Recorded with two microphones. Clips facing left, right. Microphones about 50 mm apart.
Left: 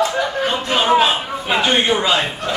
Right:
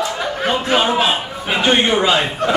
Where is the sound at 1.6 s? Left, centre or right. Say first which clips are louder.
Right 4 dB; centre.